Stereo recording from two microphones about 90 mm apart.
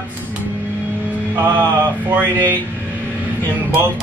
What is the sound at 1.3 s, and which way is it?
Mantra, 25° right (ahead or behind).